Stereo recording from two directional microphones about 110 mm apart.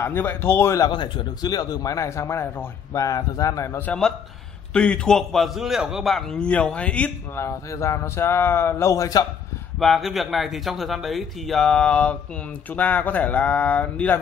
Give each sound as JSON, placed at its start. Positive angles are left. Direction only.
{"t": 0.0, "sound": "speech", "side_deg": 20}
{"t": 0.8, "sound": "a man's voice", "side_deg": 45}
{"t": 2.9, "sound": "a man's voice", "side_deg": 30}
{"t": 4.7, "sound": "speech", "side_deg": 10}
{"t": 7.3, "sound": "speech", "side_deg": 25}
{"t": 9.8, "sound": "speech", "side_deg": 0}